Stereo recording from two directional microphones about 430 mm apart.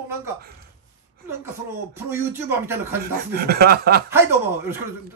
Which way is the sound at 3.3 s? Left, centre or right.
Right.